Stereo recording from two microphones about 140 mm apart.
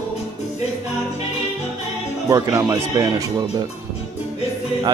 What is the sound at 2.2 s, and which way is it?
Speech, 25° right (ahead or behind).